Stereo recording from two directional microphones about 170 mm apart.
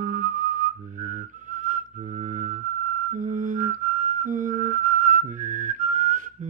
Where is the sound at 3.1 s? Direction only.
50° right (ahead or behind).